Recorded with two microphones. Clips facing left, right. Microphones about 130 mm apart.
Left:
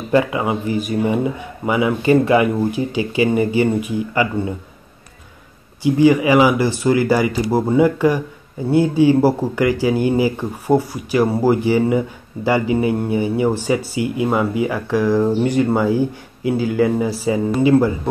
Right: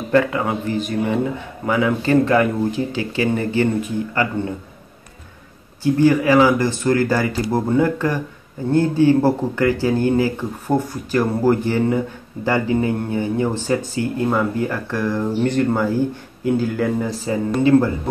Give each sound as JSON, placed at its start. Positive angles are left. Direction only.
{"t": 0.1, "sound": "speech", "side_deg": 15}
{"t": 5.8, "sound": "speech", "side_deg": 15}